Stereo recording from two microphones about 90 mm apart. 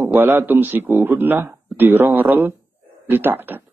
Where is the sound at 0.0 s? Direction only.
25° right (ahead or behind).